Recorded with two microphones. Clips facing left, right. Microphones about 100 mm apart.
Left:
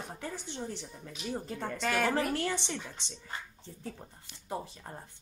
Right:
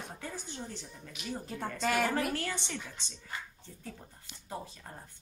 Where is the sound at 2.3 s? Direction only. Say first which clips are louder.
Left 3 dB; 20° left (ahead or behind).